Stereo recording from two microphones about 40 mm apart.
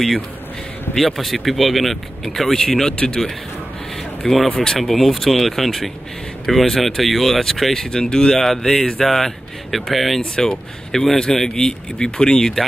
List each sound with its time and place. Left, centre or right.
0.9 s speech: centre
4.2 s speech: centre
10.3 s speech: centre